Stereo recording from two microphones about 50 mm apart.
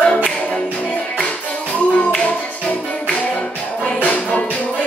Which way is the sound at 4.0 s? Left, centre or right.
Left.